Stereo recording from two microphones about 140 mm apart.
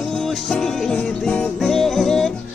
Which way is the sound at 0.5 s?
5° left (ahead or behind).